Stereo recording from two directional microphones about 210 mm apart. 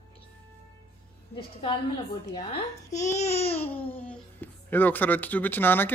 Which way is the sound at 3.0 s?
30° left (ahead or behind).